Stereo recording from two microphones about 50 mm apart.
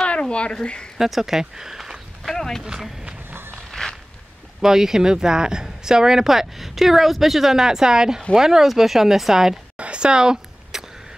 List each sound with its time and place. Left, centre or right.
0.0 s speech: left
0.9 s speech: centre
2.2 s speech: centre
2.6 s speech: centre
3.3 s walk: right
3.5 s walk: centre
4.6 s speech: centre
9.8 s a sound: right